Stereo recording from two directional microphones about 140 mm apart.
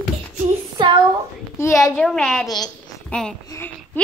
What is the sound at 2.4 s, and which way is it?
Speech, 30° left (ahead or behind).